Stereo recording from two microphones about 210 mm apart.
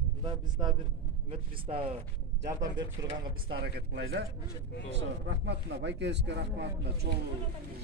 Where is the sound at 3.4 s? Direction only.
50° right (ahead or behind).